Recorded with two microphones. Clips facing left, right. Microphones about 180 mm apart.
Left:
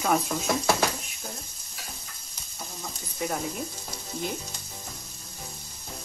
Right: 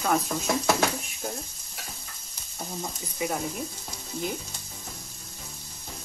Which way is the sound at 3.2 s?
Centre (ahead or behind).